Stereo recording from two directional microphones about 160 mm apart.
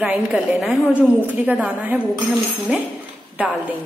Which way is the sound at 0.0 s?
10° right (ahead or behind).